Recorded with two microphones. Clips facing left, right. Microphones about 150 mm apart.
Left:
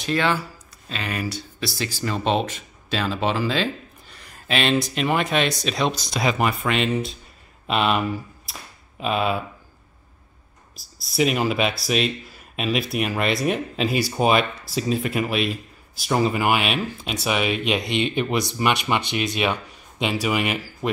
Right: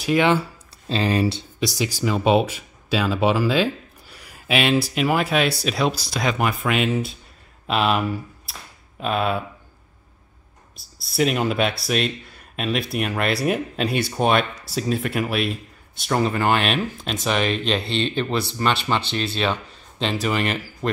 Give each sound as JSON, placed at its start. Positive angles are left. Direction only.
{"t": 0.0, "sound": "speech", "side_deg": -15}
{"t": 0.4, "sound": "speech", "side_deg": -30}
{"t": 1.6, "sound": "speech", "side_deg": -15}
{"t": 11.1, "sound": "speech", "side_deg": 0}